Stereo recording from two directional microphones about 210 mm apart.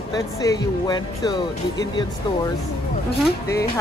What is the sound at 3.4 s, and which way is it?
Speech, 15° left (ahead or behind).